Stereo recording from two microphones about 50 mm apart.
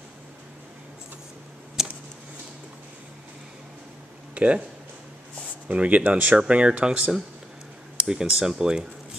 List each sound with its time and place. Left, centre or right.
1.8 s a sound: centre
4.4 s speech: right
5.7 s speech: right
6.4 s speech: centre